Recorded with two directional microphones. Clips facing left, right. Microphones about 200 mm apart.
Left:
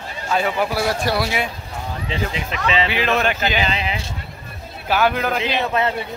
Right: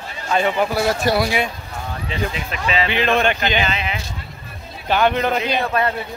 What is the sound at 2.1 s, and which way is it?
Speech, 25° left (ahead or behind).